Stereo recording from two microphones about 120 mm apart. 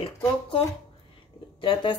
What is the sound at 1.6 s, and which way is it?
Speech, 45° left (ahead or behind).